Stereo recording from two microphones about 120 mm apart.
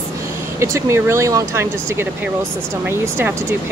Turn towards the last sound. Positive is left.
turn(degrees=-20)  # may be behind; listen again after turning